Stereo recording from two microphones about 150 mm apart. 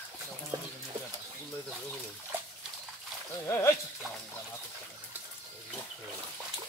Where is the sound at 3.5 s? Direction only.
20° left (ahead or behind).